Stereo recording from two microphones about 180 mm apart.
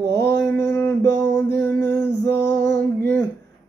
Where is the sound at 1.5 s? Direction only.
15° left (ahead or behind).